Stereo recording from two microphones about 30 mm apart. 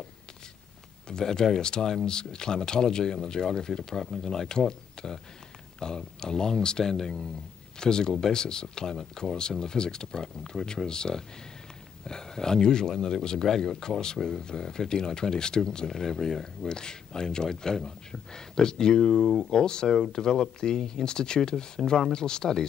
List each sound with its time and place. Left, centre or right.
1.0 s speech: left
6.8 s speech: centre
7.8 s speech: left
15.9 s speech: centre
16.6 s speech: left